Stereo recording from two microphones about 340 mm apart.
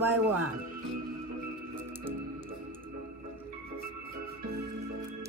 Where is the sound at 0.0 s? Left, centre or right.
Centre.